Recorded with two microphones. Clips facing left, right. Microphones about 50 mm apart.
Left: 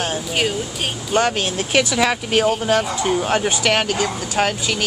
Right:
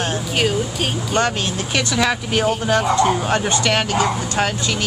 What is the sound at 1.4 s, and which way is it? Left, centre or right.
Speech, centre.